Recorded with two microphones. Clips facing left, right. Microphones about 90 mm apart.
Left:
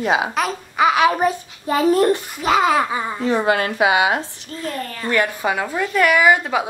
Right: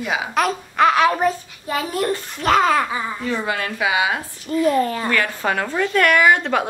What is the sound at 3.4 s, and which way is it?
Speech, 40° left (ahead or behind).